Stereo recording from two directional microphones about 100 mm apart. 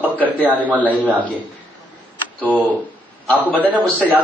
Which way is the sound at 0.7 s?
15° right (ahead or behind).